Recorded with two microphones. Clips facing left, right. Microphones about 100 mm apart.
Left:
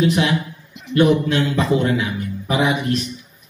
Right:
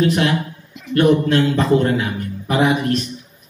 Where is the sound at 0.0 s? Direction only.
45° right (ahead or behind).